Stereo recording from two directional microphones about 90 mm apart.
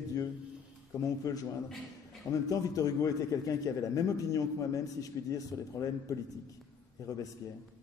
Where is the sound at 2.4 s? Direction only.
40° left (ahead or behind).